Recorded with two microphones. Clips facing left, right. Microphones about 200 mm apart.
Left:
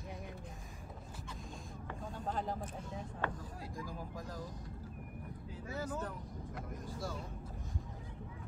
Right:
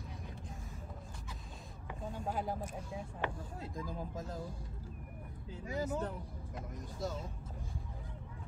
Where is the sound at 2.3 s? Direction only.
10° right (ahead or behind).